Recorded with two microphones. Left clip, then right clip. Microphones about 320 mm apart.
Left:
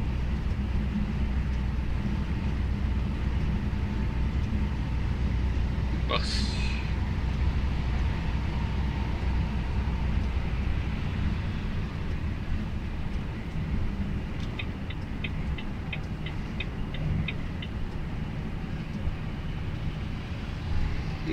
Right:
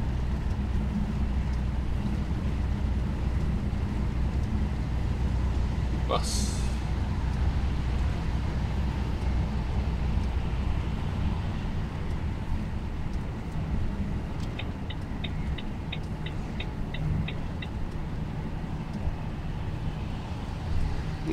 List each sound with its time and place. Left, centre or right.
6.0 s vehicle: centre